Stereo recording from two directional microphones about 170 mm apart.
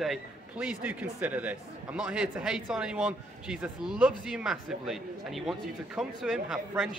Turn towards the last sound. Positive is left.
turn(degrees=0)  # may be behind; listen again after turning